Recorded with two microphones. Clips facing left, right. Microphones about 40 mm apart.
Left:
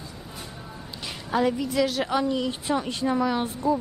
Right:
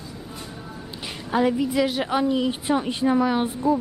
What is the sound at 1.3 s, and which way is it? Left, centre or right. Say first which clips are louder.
A woman's voice: right 3 dB; centre.